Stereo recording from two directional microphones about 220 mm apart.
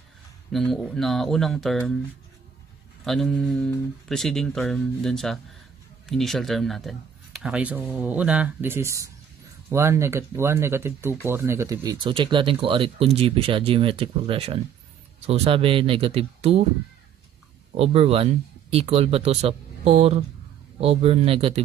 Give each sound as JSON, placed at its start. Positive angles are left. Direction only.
{"t": 0.5, "sound": "speech", "side_deg": 0}
{"t": 3.0, "sound": "speech", "side_deg": 0}
{"t": 17.7, "sound": "speech", "side_deg": -25}